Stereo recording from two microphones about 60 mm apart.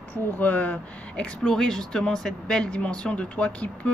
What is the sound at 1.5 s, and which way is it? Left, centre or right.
Speech, centre.